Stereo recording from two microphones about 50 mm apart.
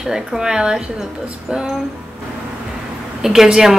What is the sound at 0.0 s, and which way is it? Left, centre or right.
Speech, centre.